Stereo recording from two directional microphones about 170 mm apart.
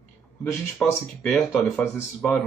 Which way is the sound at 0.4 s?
15° left (ahead or behind).